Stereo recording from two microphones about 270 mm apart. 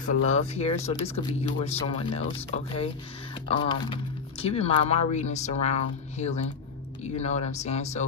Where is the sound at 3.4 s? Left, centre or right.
Centre.